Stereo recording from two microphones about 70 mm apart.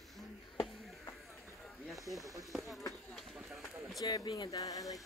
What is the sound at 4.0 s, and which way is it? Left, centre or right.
Speech, left.